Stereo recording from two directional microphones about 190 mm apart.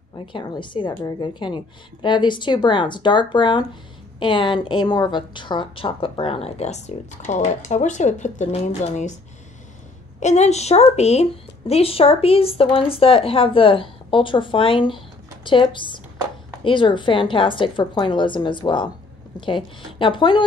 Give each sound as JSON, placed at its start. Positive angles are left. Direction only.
{"t": 0.3, "sound": "a woman's voice", "side_deg": 25}
{"t": 10.2, "sound": "a woman's voice", "side_deg": 35}